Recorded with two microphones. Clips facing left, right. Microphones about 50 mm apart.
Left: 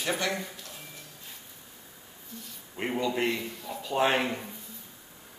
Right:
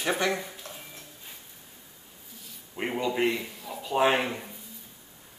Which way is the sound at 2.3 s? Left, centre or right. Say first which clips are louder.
Right 2 dB; centre.